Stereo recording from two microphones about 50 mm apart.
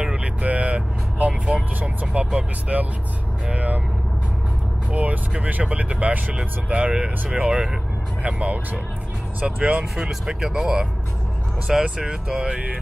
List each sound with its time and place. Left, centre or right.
0.0 s vehicle: right
3.5 s speech: right
4.9 s speech: right